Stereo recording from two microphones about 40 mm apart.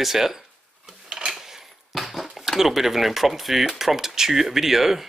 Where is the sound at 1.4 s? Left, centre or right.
Centre.